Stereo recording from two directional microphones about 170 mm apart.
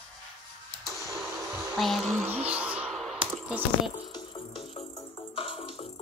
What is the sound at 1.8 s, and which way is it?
Speech, centre (ahead or behind).